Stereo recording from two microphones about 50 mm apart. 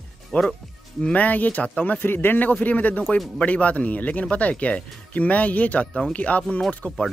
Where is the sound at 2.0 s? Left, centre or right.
Left; by 7.0 s centre.